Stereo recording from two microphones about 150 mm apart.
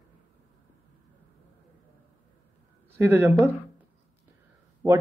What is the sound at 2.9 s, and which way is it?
Speech, 15° right (ahead or behind).